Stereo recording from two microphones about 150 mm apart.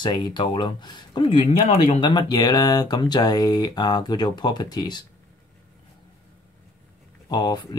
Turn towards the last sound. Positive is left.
turn(degrees=30)  # may be behind; listen again after turning